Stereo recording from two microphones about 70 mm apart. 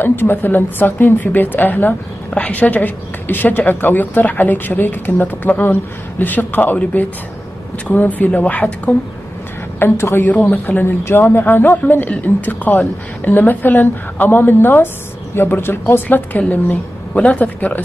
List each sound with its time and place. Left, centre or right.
0.0 s a woman's voice: left
9.8 s a woman's voice: left
10.2 s a woman's voice: left